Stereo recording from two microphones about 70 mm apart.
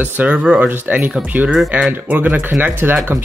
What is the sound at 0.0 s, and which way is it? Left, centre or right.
Speech, right.